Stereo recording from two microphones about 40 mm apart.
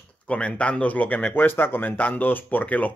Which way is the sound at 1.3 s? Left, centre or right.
Left.